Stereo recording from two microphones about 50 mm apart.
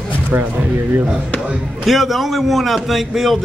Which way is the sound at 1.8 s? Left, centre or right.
Centre.